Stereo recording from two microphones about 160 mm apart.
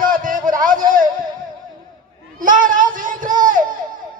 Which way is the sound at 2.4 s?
55° right (ahead or behind).